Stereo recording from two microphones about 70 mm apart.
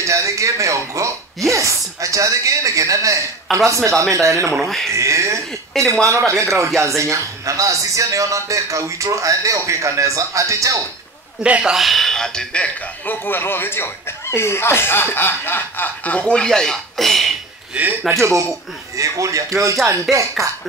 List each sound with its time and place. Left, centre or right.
0.0 s a man's voice: right
4.6 s speech: centre
4.9 s a man's voice: right
11.4 s speech: centre
11.7 s speech: centre
17.8 s a man's voice: centre
18.1 s a man's voice: right